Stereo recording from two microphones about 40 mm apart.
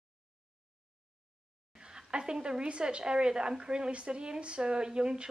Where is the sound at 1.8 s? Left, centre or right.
Centre.